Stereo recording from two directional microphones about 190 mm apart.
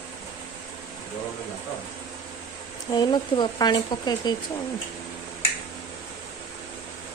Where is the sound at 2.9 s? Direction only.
25° left (ahead or behind).